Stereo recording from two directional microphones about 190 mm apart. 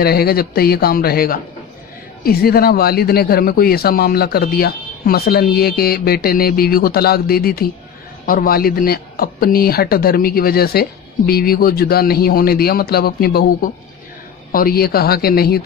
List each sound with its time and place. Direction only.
0.0 s speech: 55° left (ahead or behind)